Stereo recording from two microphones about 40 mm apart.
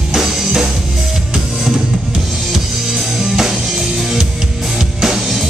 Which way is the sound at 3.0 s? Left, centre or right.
Centre.